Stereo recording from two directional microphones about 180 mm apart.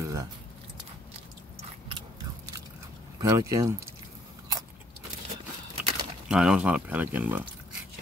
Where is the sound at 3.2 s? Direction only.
20° right (ahead or behind).